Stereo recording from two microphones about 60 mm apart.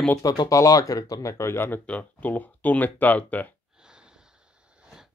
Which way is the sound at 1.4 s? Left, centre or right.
Left.